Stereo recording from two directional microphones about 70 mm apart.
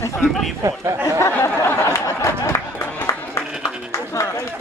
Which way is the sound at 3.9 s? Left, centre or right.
Left.